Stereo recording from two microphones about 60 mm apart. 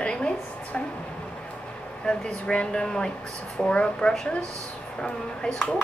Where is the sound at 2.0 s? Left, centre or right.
Centre.